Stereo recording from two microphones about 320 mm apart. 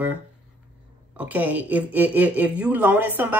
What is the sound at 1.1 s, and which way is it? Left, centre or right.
A woman's voice, centre.